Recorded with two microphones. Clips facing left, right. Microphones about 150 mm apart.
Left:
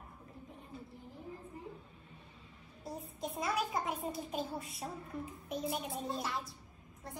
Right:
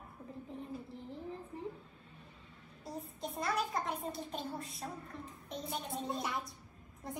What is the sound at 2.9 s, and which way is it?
Child singing, centre (ahead or behind).